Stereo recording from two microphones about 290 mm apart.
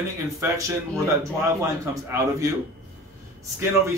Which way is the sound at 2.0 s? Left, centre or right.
Centre.